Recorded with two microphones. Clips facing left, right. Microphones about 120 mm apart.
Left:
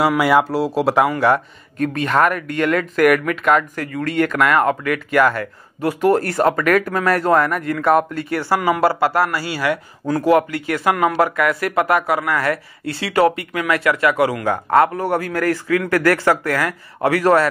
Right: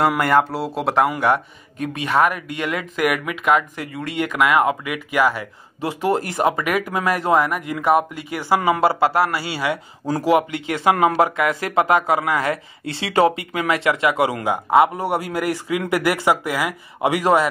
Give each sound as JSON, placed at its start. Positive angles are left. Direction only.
{"t": 0.0, "sound": "speech", "side_deg": 5}
{"t": 8.5, "sound": "speech", "side_deg": -25}